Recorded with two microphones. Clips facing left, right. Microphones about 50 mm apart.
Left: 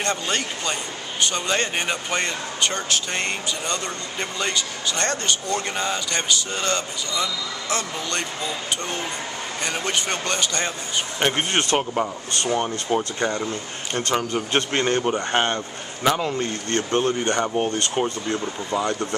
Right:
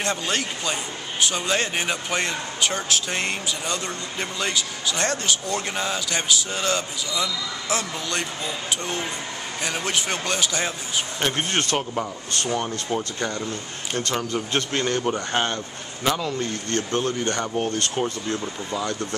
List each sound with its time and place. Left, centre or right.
0.0 s speech: centre
11.1 s speech: left